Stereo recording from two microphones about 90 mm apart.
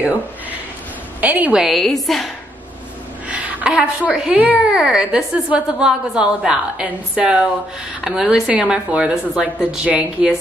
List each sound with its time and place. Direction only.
1.2 s a woman's voice: 15° right (ahead or behind)
1.6 s a woman's voice: centre (ahead or behind)
3.3 s a woman's voice: 10° right (ahead or behind)